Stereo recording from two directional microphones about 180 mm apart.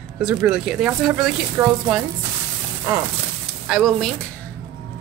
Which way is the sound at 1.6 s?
15° right (ahead or behind).